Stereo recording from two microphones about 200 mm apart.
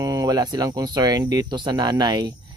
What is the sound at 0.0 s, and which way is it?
Speech, 15° right (ahead or behind).